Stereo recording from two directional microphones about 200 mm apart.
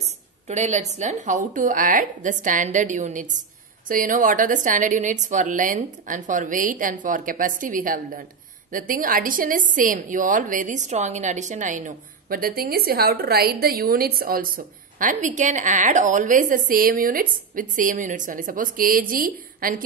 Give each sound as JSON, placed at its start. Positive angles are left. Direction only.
{"t": 0.5, "sound": "a woman's voice", "side_deg": -35}